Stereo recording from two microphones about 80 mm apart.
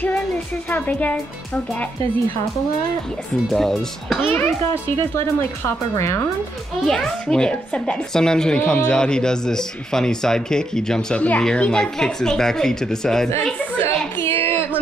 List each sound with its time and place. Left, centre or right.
0.7 s a child's voice: centre
3.4 s speech: centre
4.3 s a child's voice: left
4.9 s speech: left
6.9 s speech: centre
13.8 s a sound: left